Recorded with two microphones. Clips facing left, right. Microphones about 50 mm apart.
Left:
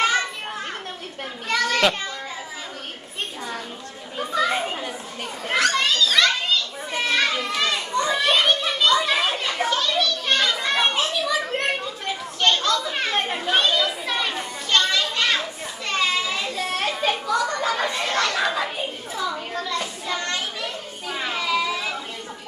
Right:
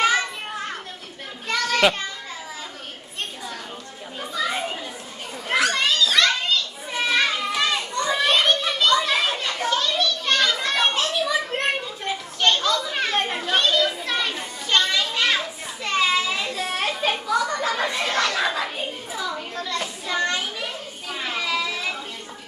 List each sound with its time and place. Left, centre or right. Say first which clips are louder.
0.0 s children playing: right 1 dB; centre
1.5 s children playing: even; centre
4.5 s children playing: left 2 dB; centre
5.5 s children playing: even; centre
11.1 s children playing: even; centre
14.7 s children playing: even; centre
19.5 s a sound: left 2 dB; centre
19.8 s child singing: right 2 dB; centre
20.2 s a sound: right 1 dB; centre
21.3 s a sound: left 2 dB; centre